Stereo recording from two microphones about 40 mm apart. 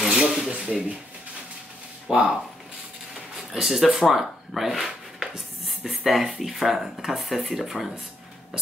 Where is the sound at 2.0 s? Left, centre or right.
Centre.